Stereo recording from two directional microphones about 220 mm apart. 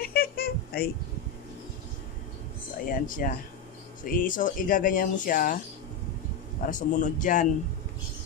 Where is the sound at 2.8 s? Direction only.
40° left (ahead or behind).